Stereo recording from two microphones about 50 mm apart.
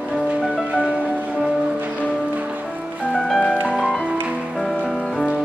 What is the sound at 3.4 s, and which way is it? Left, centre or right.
Music, centre.